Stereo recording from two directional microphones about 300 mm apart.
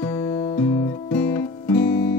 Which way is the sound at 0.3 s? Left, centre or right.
Centre.